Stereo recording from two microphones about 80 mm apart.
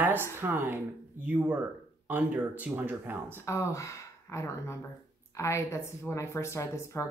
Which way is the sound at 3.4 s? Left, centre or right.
Left.